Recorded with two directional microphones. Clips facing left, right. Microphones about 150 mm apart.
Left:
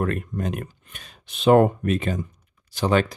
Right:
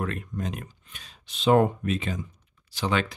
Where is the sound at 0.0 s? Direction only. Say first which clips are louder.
Left 5 dB; 50° left (ahead or behind).